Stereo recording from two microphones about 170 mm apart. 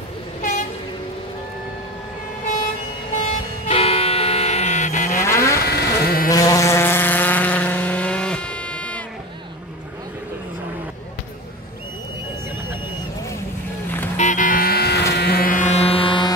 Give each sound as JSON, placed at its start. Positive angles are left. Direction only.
{"t": 3.6, "sound": "vehicle", "side_deg": 35}
{"t": 5.2, "sound": "vehicle", "side_deg": 15}
{"t": 5.6, "sound": "a sound", "side_deg": 65}
{"t": 6.3, "sound": "vehicle", "side_deg": 20}
{"t": 14.1, "sound": "music", "side_deg": 45}
{"t": 15.8, "sound": "music", "side_deg": 10}
{"t": 16.1, "sound": "music", "side_deg": 25}